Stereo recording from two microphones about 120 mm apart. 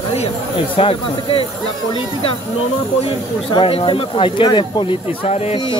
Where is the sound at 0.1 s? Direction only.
55° left (ahead or behind).